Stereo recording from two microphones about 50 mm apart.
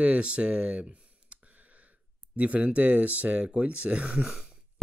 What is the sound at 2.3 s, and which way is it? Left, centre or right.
Speech, right.